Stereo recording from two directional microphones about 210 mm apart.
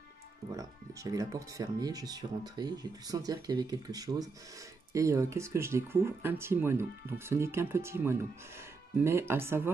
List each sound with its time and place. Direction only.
0.5 s speech: 15° right (ahead or behind)